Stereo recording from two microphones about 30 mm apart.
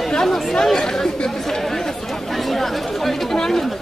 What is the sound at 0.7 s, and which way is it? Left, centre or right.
Speech, centre.